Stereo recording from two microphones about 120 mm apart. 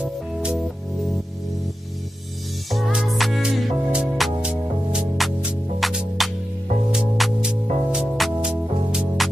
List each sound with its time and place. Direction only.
0.0 s music: 10° right (ahead or behind)
2.7 s music: centre (ahead or behind)